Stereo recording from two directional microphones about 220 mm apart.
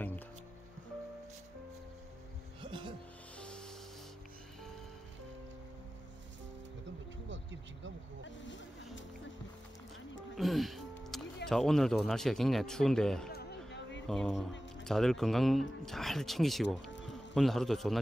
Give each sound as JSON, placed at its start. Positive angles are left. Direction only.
{"t": 2.6, "sound": "music", "side_deg": -25}
{"t": 3.3, "sound": "music", "side_deg": 5}
{"t": 10.3, "sound": "music", "side_deg": 0}
{"t": 11.4, "sound": "a man's voice", "side_deg": 0}